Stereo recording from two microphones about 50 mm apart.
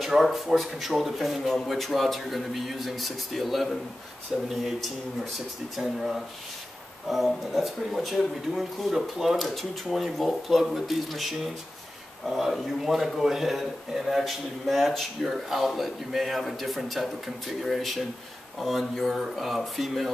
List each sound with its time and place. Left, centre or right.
0.0 s a man's voice: centre
5.8 s a man's voice: centre
7.2 s a man's voice: centre